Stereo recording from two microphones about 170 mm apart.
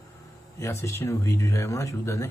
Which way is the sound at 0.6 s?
15° left (ahead or behind).